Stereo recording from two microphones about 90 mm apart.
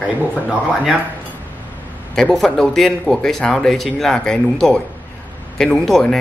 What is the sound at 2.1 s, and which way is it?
Speech, 5° left (ahead or behind).